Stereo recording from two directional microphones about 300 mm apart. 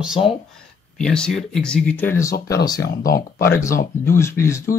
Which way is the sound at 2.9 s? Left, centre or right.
Left.